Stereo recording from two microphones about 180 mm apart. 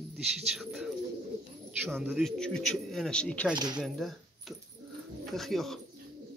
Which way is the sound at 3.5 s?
25° right (ahead or behind).